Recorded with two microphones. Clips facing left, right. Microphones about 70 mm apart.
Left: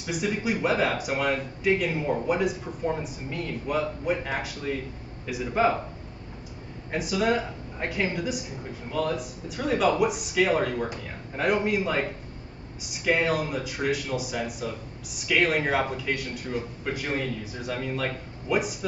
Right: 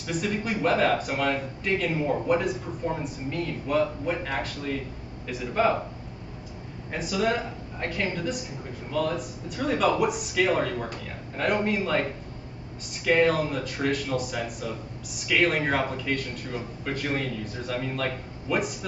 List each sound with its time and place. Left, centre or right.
0.0 s a man's voice: centre
6.9 s a man's voice: centre
13.0 s a man's voice: centre